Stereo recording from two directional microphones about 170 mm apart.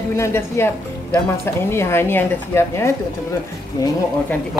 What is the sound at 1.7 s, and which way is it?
Speech, 15° left (ahead or behind).